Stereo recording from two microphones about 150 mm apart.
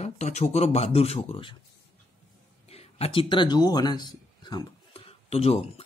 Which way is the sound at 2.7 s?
45° left (ahead or behind).